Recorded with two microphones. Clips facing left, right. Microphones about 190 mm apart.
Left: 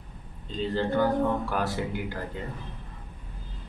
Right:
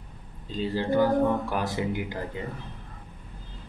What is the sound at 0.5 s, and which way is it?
Speech, 5° right (ahead or behind).